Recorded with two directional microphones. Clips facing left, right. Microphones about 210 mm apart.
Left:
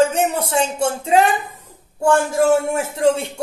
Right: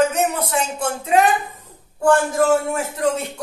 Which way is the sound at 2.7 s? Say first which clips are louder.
Left 4 dB; 30° left (ahead or behind).